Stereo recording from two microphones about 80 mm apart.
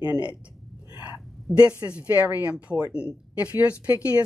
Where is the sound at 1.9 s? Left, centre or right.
Right.